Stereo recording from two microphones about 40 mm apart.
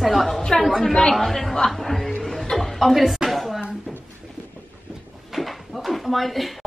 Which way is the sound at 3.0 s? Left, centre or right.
Centre.